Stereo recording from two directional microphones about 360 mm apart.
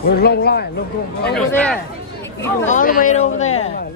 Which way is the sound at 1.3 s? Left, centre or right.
Centre.